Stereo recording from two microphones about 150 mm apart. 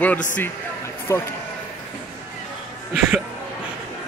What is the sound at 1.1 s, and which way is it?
Speech, 20° left (ahead or behind).